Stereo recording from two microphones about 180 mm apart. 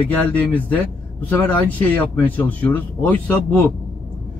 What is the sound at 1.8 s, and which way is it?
A man's voice, 10° left (ahead or behind).